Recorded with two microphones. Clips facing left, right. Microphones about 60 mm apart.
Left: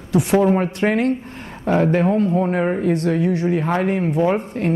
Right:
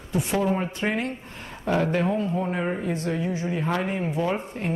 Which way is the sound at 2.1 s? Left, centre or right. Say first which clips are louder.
Left 8 dB; left.